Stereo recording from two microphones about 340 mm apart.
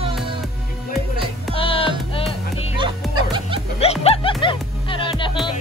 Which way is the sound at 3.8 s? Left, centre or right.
Centre.